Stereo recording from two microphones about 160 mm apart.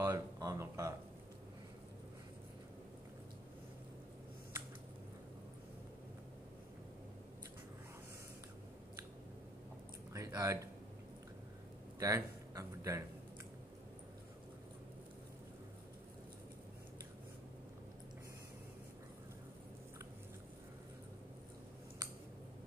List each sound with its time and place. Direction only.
0.0 s speech: 20° right (ahead or behind)
10.1 s speech: 20° right (ahead or behind)
12.0 s speech: 20° right (ahead or behind)